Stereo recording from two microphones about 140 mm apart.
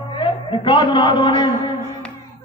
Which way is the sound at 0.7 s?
35° left (ahead or behind).